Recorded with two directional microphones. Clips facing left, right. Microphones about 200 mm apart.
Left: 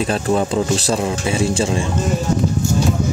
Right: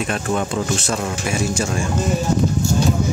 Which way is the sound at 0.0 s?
30° left (ahead or behind).